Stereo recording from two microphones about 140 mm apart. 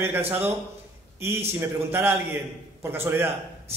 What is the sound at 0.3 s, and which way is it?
A man's voice, 15° right (ahead or behind).